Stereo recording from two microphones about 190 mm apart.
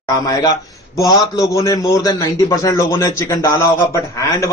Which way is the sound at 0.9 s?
20° left (ahead or behind).